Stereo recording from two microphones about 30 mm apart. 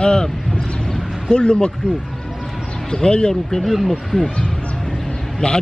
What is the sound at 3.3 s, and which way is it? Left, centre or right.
Speech, centre.